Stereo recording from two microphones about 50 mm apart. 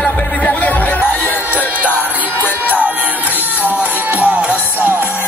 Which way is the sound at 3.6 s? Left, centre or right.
Right.